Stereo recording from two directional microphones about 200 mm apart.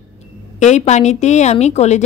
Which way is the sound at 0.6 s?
35° left (ahead or behind).